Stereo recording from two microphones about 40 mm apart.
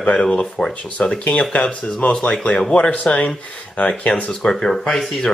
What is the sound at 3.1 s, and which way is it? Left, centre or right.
Speech, centre.